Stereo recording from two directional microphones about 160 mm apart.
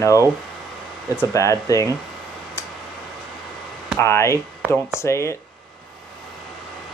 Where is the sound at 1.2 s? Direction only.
20° left (ahead or behind).